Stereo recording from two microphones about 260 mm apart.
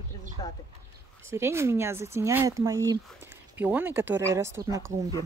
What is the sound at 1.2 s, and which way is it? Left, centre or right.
Speech, centre.